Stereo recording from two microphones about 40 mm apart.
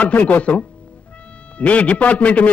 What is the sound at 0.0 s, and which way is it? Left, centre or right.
A man's voice, left.